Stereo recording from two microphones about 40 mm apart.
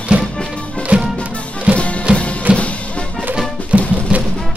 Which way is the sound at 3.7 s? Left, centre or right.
Right.